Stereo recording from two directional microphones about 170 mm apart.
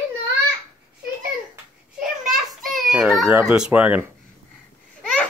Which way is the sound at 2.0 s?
Centre (ahead or behind).